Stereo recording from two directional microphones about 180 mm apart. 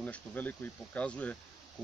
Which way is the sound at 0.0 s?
10° left (ahead or behind).